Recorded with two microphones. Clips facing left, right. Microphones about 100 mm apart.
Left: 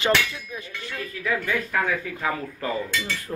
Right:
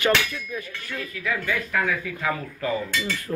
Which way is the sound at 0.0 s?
20° left (ahead or behind).